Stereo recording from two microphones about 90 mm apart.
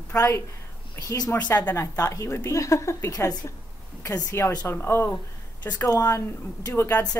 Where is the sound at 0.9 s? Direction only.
45° left (ahead or behind).